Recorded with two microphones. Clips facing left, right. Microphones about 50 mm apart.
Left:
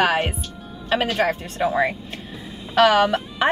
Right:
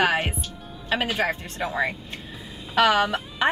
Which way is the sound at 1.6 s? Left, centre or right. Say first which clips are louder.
Left 6 dB; centre.